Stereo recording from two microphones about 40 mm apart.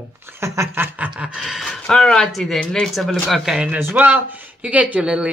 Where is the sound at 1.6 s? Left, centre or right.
Centre.